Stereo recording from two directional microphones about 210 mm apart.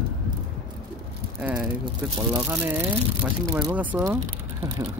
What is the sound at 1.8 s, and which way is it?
Speech, 20° right (ahead or behind).